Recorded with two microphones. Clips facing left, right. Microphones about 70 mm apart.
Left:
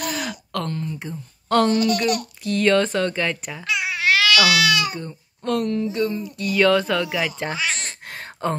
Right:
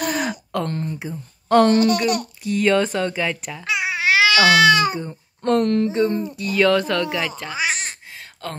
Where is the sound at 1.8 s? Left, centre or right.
Right.